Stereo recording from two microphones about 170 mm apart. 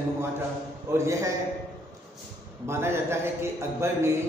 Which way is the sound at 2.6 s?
15° right (ahead or behind).